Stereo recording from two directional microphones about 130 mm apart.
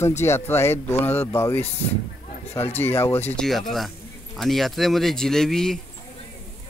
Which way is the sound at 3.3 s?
Centre (ahead or behind).